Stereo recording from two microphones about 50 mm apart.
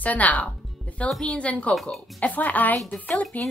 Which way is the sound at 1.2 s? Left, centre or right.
Left.